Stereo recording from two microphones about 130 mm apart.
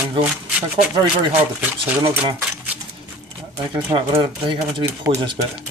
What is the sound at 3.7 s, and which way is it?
Speech, 40° right (ahead or behind).